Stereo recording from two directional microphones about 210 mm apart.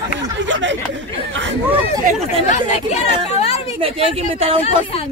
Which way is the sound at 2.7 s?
30° left (ahead or behind).